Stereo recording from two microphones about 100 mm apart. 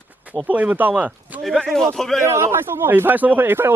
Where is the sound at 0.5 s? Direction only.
15° right (ahead or behind).